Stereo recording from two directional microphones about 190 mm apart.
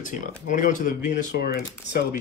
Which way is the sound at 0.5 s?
45° left (ahead or behind).